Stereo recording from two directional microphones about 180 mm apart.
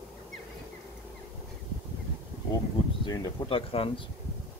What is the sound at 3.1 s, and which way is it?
Speech, 30° left (ahead or behind).